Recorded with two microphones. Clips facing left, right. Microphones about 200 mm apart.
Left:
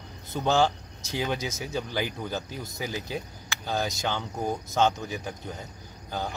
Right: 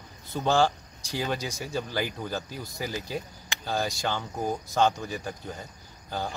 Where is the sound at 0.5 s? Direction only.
10° right (ahead or behind).